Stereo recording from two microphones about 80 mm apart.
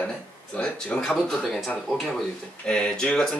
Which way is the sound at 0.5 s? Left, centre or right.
Centre.